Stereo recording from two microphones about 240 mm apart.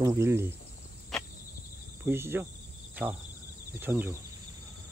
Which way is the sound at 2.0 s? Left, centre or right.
Centre.